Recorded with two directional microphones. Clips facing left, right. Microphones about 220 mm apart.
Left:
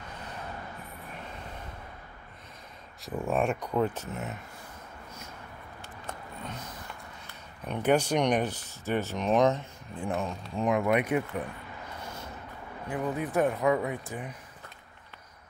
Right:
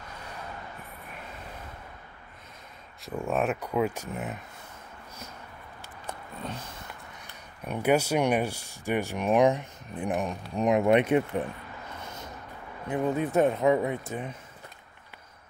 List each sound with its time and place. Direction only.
3.0 s speech: centre (ahead or behind); by 4.4 s 15° right (ahead or behind)
6.4 s vehicle: 30° right (ahead or behind)
7.6 s speech: 10° right (ahead or behind); by 11.4 s 25° right (ahead or behind)
12.9 s speech: 25° right (ahead or behind)